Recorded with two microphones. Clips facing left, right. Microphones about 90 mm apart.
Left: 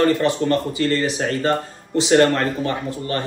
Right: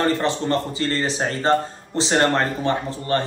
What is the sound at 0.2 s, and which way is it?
Speech, 30° right (ahead or behind).